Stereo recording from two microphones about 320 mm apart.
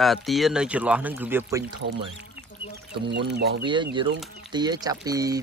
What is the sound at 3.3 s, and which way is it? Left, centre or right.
Speech, right.